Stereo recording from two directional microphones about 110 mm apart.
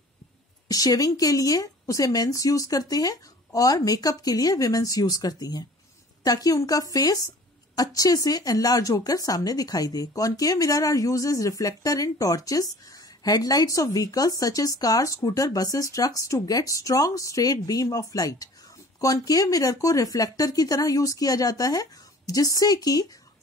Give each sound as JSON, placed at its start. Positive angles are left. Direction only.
{"t": 0.7, "sound": "speech", "side_deg": 35}